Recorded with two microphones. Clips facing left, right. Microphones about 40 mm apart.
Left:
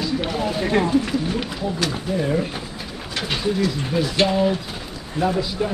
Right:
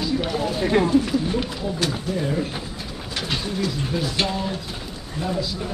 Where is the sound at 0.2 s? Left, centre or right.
Centre.